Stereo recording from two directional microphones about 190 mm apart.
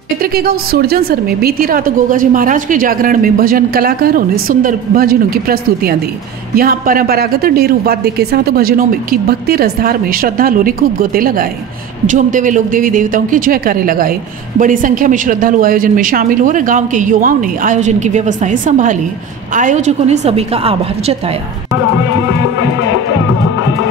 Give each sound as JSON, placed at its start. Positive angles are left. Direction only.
{"t": 0.2, "sound": "a woman's voice", "side_deg": -50}